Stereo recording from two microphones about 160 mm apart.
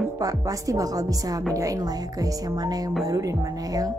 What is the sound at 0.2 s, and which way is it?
Speech, 20° right (ahead or behind).